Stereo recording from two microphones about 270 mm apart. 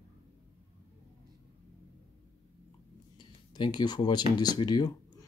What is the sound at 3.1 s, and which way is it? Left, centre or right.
Speech, centre.